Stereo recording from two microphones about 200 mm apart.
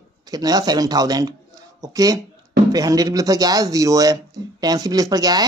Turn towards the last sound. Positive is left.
turn(degrees=-20)  # may be behind; listen again after turning